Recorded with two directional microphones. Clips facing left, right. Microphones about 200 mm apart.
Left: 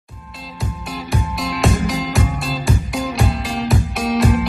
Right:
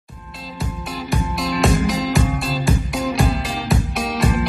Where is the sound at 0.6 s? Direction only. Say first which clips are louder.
Even; centre (ahead or behind).